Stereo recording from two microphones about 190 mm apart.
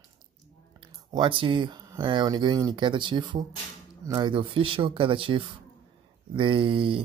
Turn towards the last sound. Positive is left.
turn(degrees=-25)  # may be behind; listen again after turning